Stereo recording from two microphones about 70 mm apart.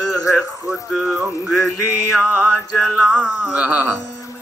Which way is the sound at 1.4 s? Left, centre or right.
Centre.